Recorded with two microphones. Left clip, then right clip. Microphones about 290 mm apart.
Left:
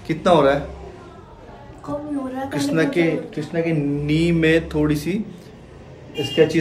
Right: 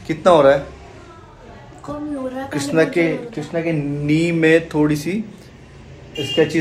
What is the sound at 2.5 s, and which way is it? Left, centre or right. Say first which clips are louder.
A man's voice: right 3 dB; centre.